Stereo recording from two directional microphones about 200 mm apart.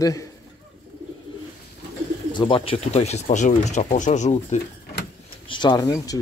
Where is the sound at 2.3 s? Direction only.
25° left (ahead or behind).